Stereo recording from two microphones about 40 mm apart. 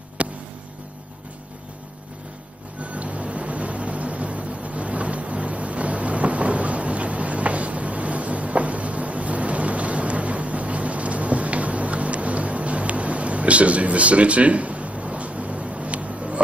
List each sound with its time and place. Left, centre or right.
0.2 s vehicle: right
2.8 s vehicle: right